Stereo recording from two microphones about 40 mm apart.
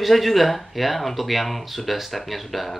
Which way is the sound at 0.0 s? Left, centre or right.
Centre.